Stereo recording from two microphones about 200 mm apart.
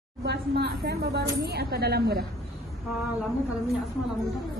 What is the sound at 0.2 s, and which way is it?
A woman's voice, 55° right (ahead or behind).